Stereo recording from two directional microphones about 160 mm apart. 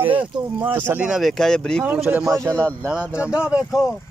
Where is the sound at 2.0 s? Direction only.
15° right (ahead or behind).